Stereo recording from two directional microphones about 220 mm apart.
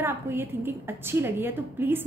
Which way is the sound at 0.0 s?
10° right (ahead or behind).